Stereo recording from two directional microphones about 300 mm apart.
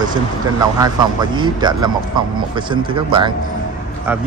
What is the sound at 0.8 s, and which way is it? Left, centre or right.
Speech, centre.